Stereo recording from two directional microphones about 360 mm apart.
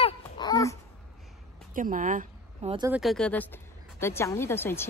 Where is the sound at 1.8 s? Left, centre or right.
Right.